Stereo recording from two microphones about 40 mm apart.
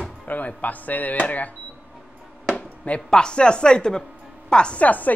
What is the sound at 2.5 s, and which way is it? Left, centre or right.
Chop, left.